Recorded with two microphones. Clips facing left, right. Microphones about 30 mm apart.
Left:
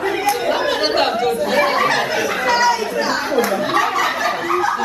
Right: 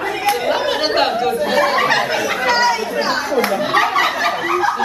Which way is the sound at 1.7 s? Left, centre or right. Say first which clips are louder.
Right 1 dB; centre.